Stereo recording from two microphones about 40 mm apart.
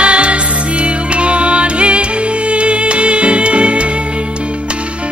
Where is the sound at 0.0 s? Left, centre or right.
Right.